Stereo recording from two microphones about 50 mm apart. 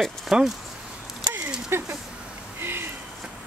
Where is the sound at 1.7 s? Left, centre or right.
Right.